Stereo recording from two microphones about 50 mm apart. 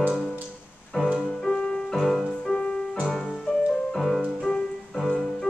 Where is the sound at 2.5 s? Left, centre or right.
Centre.